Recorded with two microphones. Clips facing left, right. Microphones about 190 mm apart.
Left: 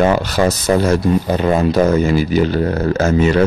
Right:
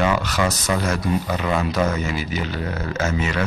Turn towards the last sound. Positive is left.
turn(degrees=35)  # may be behind; listen again after turning